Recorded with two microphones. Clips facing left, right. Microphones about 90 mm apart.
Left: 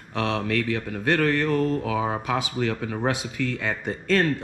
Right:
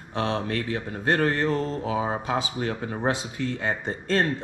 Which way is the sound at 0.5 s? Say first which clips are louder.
Left 3 dB; 25° right (ahead or behind).